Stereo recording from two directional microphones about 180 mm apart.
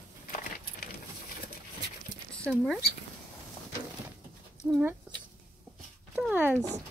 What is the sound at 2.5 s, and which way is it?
Speech, centre (ahead or behind).